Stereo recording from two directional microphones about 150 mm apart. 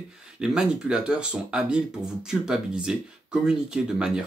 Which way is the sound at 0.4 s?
5° right (ahead or behind).